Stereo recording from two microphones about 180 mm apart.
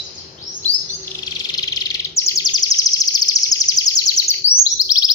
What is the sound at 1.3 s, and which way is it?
Bird, 20° left (ahead or behind).